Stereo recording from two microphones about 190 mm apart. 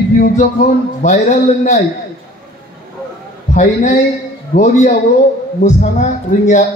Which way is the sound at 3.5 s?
40° left (ahead or behind).